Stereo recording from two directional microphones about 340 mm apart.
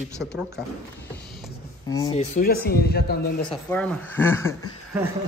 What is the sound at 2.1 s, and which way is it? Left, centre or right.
Speech, left.